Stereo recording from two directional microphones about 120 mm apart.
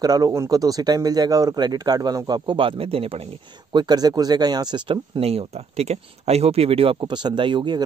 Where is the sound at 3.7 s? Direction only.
35° right (ahead or behind).